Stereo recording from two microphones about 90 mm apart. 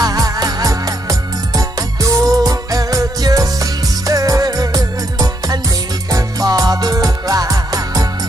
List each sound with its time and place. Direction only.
0.0 s music: 45° right (ahead or behind)